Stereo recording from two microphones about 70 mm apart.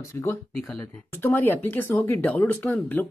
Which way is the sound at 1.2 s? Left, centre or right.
Left.